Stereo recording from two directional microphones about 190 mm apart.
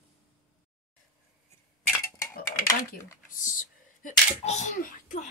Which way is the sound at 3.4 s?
45° left (ahead or behind).